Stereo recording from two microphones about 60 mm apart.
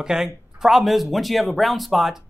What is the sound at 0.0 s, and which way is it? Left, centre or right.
Speech, centre.